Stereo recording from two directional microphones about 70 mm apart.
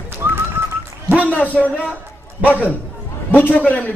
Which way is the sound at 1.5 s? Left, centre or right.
Centre.